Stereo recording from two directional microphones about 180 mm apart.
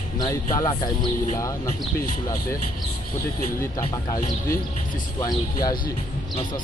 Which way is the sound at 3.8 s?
20° left (ahead or behind).